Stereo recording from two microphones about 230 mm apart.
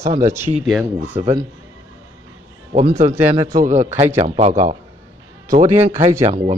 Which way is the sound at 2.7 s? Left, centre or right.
Right.